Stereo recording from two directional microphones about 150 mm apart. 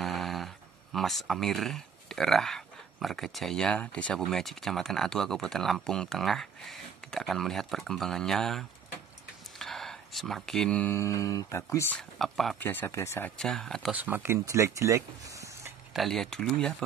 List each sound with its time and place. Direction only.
0.0 s a sound: centre (ahead or behind)
0.9 s speech: centre (ahead or behind)
9.6 s a sound: centre (ahead or behind)
11.0 s speech: 20° left (ahead or behind)
12.0 s speech: centre (ahead or behind)
12.5 s speech: 15° left (ahead or behind)
13.4 s speech: 5° left (ahead or behind)
13.9 s speech: 10° right (ahead or behind)
15.9 s speech: centre (ahead or behind)